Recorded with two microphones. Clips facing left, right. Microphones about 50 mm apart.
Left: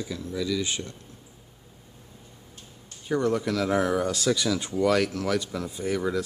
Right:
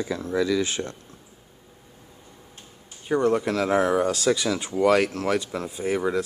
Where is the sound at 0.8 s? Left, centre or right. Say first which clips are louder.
Right 6 dB; right.